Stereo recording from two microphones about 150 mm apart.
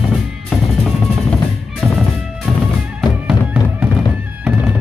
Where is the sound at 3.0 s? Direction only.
5° right (ahead or behind).